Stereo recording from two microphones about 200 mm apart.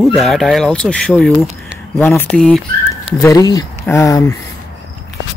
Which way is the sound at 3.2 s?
15° left (ahead or behind).